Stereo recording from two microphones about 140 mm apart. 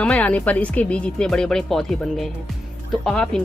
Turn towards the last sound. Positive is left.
turn(degrees=5)  # may be behind; listen again after turning